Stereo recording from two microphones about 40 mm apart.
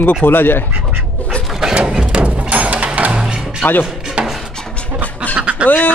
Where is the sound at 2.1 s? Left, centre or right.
Right.